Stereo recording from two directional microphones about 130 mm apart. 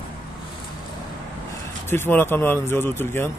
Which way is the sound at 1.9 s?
15° left (ahead or behind).